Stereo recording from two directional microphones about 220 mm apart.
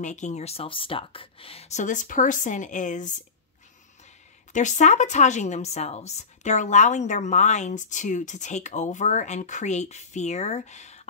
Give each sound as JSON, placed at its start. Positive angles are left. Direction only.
{"t": 0.0, "sound": "a woman's voice", "side_deg": 35}
{"t": 4.5, "sound": "a woman's voice", "side_deg": 35}